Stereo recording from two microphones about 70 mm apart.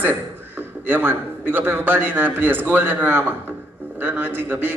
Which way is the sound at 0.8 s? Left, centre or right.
Right.